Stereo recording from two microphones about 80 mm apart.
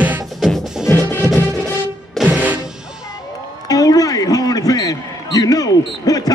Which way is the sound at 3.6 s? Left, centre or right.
Left.